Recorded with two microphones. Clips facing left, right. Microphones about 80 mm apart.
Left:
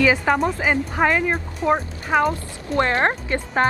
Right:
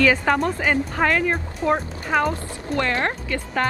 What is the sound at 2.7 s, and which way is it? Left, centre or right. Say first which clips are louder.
Speech: left 4 dB; left.